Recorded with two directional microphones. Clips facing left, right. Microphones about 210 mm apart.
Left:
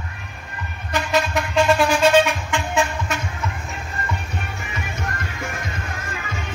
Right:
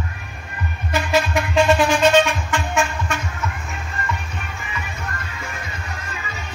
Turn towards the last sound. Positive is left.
turn(degrees=50)  # may be behind; listen again after turning